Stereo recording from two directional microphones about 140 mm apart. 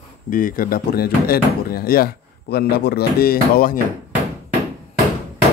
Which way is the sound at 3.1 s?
90° left.